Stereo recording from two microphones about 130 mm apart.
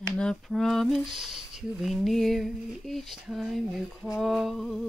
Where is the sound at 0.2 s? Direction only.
5° left (ahead or behind).